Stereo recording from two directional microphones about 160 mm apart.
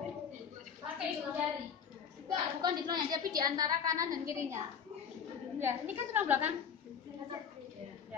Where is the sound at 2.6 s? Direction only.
25° right (ahead or behind).